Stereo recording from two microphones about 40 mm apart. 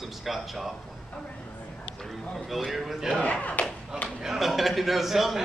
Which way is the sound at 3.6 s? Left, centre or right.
Left.